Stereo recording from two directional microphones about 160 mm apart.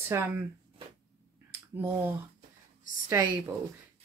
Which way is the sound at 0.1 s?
20° right (ahead or behind).